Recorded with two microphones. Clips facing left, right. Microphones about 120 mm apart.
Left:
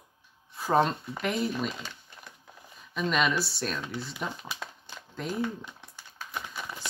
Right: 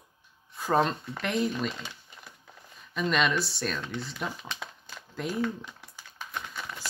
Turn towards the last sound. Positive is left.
turn(degrees=10)  # may be behind; listen again after turning